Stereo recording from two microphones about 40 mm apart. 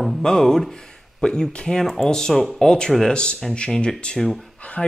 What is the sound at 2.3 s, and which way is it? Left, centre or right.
Speech, centre.